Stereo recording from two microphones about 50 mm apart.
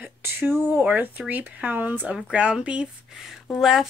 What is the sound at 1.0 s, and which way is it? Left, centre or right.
Speech, right.